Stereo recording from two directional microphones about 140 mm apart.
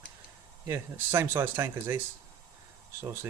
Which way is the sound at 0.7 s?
15° right (ahead or behind).